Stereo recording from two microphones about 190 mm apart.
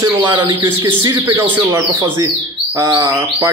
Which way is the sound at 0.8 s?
10° right (ahead or behind).